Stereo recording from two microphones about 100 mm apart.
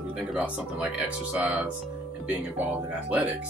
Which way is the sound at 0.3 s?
15° right (ahead or behind).